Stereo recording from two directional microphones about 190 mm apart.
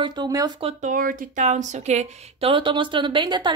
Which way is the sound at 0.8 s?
45° right (ahead or behind).